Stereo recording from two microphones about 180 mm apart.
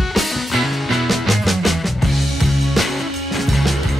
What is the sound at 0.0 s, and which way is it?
Music, centre (ahead or behind).